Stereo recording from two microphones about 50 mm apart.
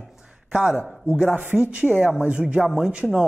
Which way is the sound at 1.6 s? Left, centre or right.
Right.